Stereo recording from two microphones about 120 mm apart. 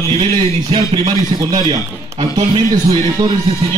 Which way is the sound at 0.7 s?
40° right (ahead or behind).